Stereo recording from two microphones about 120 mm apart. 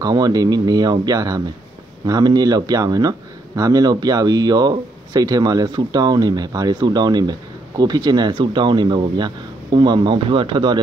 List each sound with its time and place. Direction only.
0.0 s speech: 30° right (ahead or behind)